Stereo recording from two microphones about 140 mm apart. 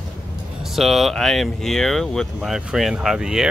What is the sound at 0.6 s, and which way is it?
Speech, centre (ahead or behind).